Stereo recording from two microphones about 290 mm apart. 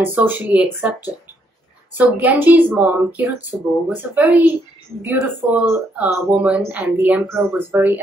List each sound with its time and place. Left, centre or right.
0.0 s speech: centre
2.0 s speech: centre